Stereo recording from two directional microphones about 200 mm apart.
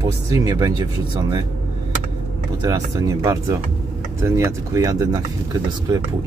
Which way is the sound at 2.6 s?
20° right (ahead or behind).